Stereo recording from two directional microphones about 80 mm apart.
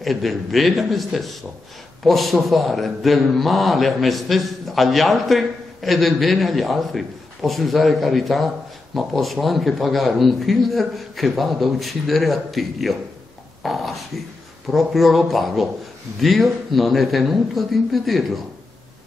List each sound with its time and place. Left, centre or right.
0.0 s a man's voice: centre